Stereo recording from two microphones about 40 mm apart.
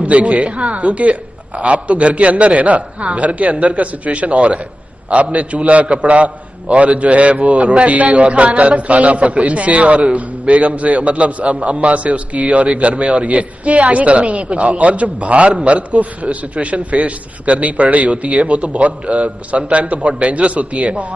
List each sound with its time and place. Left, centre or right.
0.0 s a man's voice: right